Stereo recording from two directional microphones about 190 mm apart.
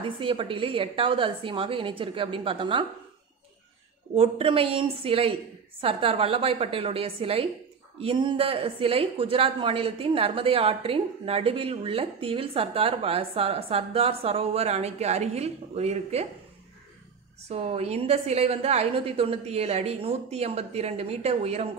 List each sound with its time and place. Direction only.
0.0 s a woman's voice: 30° right (ahead or behind)
4.1 s a woman's voice: 30° right (ahead or behind)
17.5 s speech: 35° right (ahead or behind)